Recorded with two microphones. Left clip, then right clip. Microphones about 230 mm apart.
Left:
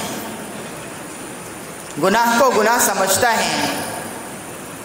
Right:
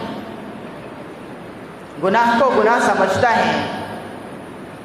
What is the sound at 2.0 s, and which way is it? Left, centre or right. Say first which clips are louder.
Speech: even; left.